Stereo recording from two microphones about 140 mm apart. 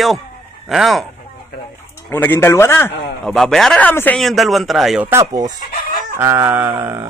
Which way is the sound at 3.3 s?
5° left (ahead or behind).